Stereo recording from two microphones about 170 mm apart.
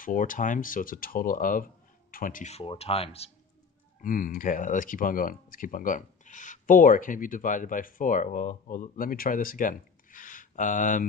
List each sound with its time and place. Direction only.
0.0 s speech: 50° left (ahead or behind)
2.5 s speech: 35° left (ahead or behind)
4.0 s speech: 55° left (ahead or behind)